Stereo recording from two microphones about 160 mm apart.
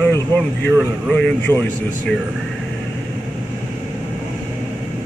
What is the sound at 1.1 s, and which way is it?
Speech, 10° left (ahead or behind).